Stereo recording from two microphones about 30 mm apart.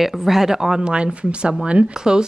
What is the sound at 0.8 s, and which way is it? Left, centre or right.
Speech, right.